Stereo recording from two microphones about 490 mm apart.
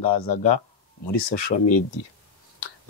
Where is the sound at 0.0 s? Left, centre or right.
Left.